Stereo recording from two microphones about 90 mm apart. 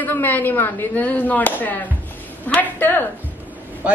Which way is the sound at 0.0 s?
20° left (ahead or behind).